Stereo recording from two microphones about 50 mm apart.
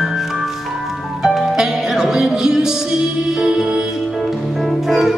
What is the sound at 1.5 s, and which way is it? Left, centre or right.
Music, centre.